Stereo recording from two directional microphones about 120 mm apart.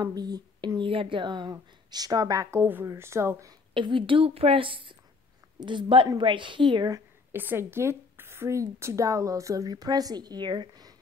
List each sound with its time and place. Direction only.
0.0 s speech: 35° right (ahead or behind)
0.7 s a woman's voice: 45° right (ahead or behind); by 3.5 s 25° right (ahead or behind)
3.7 s a woman's voice: 45° right (ahead or behind)
7.3 s a woman's voice: 20° right (ahead or behind); by 11.0 s 35° right (ahead or behind)